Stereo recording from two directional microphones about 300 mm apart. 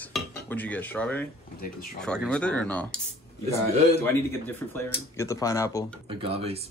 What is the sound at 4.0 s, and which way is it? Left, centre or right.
Speech, centre.